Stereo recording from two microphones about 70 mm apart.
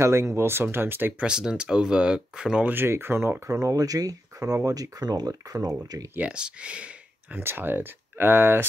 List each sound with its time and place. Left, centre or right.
0.0 s speech: right
1.2 s speech: centre
2.6 s speech: right
3.4 s speech: right
6.1 s speech: centre
7.3 s speech: right